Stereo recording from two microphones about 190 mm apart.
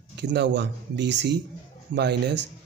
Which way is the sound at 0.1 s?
65° right (ahead or behind).